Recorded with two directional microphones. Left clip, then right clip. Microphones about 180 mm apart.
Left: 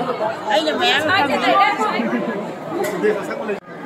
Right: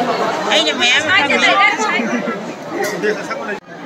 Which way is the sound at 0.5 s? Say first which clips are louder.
Right 3 dB; 35° left (ahead or behind).